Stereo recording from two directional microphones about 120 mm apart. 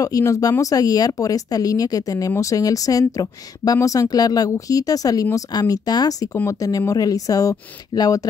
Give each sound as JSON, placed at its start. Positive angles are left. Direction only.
{"t": 0.0, "sound": "speech", "side_deg": 25}